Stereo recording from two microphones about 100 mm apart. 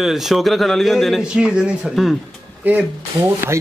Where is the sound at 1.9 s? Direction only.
Centre (ahead or behind).